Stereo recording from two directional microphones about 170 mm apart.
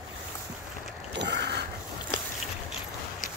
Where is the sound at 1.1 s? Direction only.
90° right.